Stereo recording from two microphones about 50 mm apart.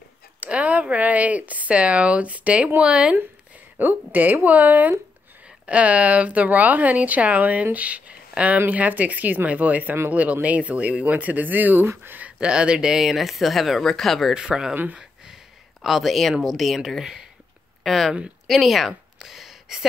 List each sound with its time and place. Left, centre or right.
0.4 s speech: right
3.7 s speech: right
11.8 s speech: right
12.2 s speech: right; by 14.3 s centre
14.3 s speech: centre
15.8 s speech: centre